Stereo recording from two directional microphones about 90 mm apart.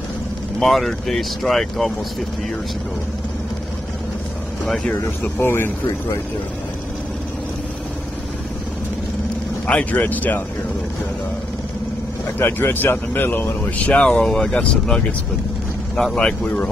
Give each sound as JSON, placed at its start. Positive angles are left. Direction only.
{"t": 0.6, "sound": "speech", "side_deg": 0}
{"t": 4.6, "sound": "speech", "side_deg": 10}
{"t": 5.4, "sound": "speech", "side_deg": 25}
{"t": 9.7, "sound": "speech", "side_deg": 15}
{"t": 12.4, "sound": "speech", "side_deg": 25}
{"t": 16.0, "sound": "speech", "side_deg": 10}